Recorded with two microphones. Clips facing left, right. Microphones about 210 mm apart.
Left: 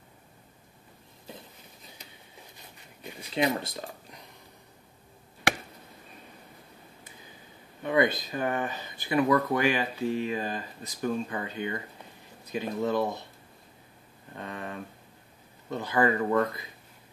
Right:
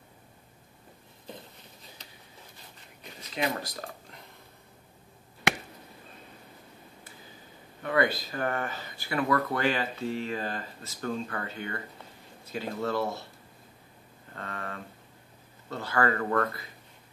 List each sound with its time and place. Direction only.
3.2 s speech: 20° left (ahead or behind)
7.8 s speech: 20° left (ahead or behind)
14.3 s speech: 15° left (ahead or behind)